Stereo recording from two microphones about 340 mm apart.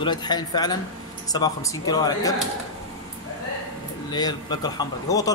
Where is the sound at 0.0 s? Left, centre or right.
Centre.